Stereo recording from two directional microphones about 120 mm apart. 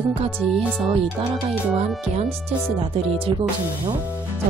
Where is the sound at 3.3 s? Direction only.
45° right (ahead or behind).